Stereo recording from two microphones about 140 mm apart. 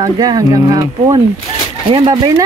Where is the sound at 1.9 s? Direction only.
45° right (ahead or behind).